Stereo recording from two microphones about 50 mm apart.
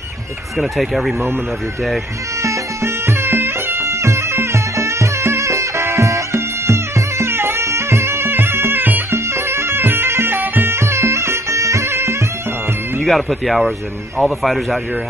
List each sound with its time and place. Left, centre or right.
0.6 s speech: centre
2.4 s music: right
7.6 s music: right
10.7 s music: right
11.9 s music: right
13.0 s speech: centre